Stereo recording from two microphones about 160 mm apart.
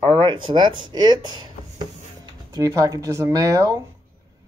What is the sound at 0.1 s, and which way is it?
Speech, 30° right (ahead or behind).